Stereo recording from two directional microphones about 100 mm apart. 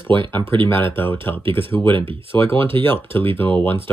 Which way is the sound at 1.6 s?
60° right (ahead or behind).